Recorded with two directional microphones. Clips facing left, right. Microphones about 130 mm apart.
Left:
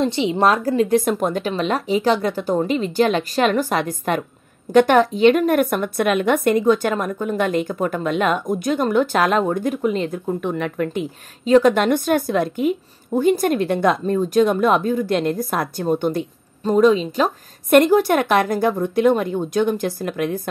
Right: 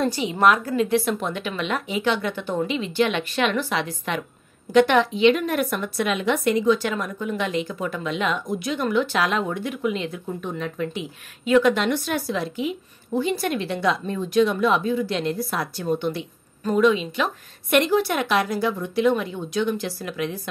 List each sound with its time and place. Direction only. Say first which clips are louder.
0.0 s a woman's voice: left 2 dB; 25° left (ahead or behind); by 10.3 s 45° left (ahead or behind)
10.4 s speech: left 3 dB; 60° left (ahead or behind)
11.4 s a woman's voice: left 4 dB; 35° left (ahead or behind)
11.7 s a woman's voice: left 6 dB; 50° left (ahead or behind)